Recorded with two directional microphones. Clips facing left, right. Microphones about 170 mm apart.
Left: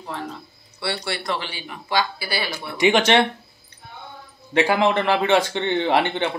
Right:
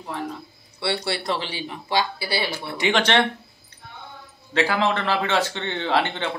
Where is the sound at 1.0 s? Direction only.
30° right (ahead or behind).